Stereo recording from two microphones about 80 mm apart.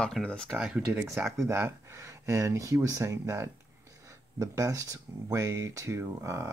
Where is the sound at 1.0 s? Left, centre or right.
Right.